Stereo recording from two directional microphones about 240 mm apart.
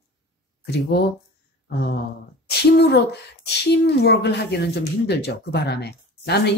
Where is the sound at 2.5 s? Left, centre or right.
Left.